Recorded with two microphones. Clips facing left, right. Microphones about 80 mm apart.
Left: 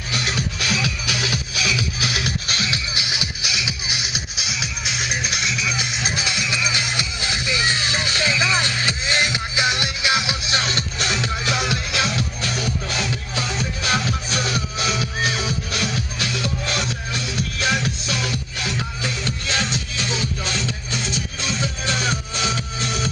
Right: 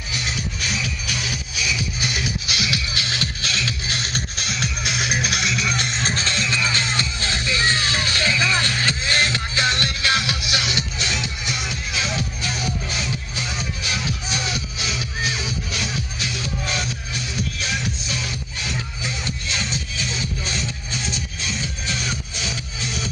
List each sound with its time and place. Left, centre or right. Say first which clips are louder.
0.1 s music: left 3 dB; left
2.4 s music: even; left
2.9 s music: right 1 dB; centre; by 11.1 s left
11.4 s music: left 5 dB; left
12.9 s music: left 3 dB; left
21.5 s music: left 5 dB; left